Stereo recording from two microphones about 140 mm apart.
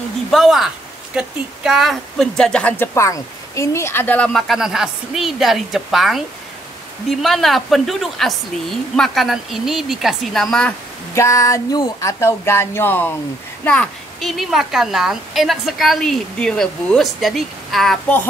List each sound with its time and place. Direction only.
0.3 s a woman's voice: centre (ahead or behind)
11.1 s a sound: 20° left (ahead or behind)
13.7 s a woman's voice: 5° left (ahead or behind)